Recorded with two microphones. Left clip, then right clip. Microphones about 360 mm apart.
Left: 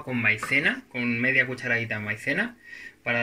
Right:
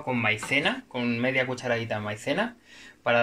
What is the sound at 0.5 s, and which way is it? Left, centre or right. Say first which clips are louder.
Speech: left 2 dB; right.